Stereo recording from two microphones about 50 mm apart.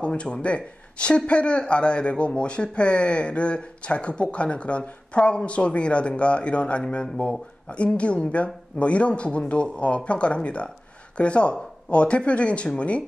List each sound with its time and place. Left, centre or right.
0.0 s speech: left